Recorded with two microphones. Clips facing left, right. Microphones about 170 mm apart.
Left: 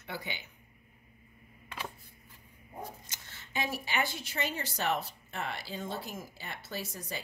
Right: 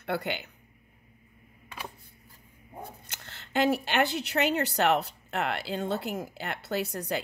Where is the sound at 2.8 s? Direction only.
60° right (ahead or behind).